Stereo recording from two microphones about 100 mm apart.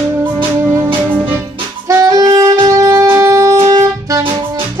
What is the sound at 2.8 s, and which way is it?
Music, 30° right (ahead or behind).